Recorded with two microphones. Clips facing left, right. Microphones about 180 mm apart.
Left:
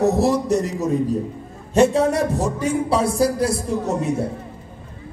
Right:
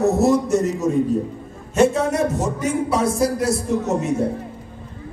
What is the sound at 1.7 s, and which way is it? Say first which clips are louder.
A man's voice: left 1 dB; 35° left (ahead or behind).